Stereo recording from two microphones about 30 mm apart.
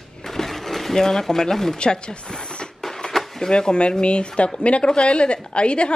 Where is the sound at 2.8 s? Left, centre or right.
Centre.